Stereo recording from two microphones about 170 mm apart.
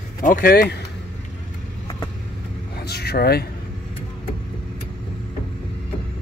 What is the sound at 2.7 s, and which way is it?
Vehicle, 70° left (ahead or behind).